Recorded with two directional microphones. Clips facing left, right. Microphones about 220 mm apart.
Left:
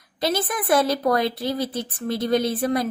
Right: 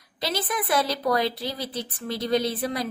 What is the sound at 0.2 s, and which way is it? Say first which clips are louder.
Speech: left 4 dB; 50° left (ahead or behind).